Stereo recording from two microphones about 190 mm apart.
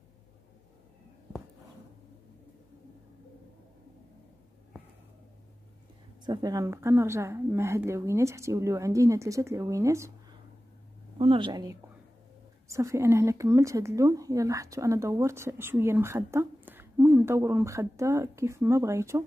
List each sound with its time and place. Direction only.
6.2 s speech: 20° right (ahead or behind)
11.1 s a woman's voice: 30° right (ahead or behind)